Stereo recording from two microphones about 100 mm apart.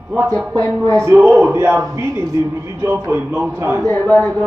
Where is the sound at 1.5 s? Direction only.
25° right (ahead or behind).